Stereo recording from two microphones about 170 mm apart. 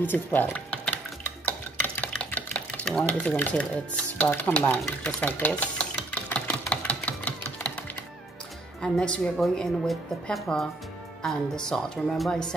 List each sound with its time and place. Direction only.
0.0 s speech: 10° left (ahead or behind)
1.4 s stir: 10° left (ahead or behind)
8.8 s speech: 5° left (ahead or behind)